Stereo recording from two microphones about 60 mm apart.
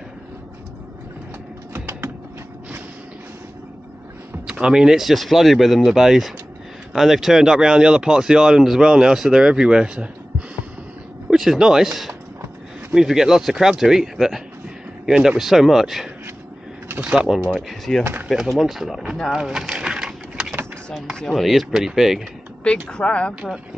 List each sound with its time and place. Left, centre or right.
1.7 s typing: right
4.5 s speech: centre
11.2 s speech: centre
17.1 s speech: centre
17.5 s speech: centre
19.3 s a sound: centre
21.2 s speech: centre
22.8 s speech: centre